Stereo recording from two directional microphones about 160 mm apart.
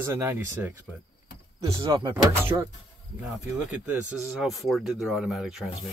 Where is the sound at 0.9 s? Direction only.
Centre (ahead or behind).